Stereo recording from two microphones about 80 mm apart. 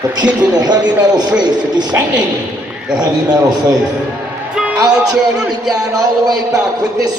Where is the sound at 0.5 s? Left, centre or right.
Right.